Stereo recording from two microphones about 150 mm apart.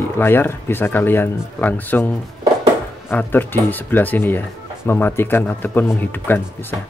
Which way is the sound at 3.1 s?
15° left (ahead or behind).